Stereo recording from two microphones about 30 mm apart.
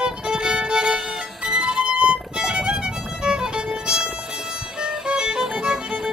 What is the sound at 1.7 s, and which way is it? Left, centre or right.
Music, right.